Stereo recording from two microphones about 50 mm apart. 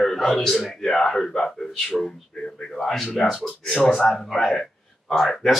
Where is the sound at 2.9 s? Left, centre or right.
Centre.